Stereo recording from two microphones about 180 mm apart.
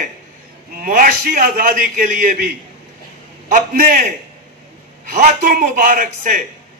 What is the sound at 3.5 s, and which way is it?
Speech, 45° right (ahead or behind).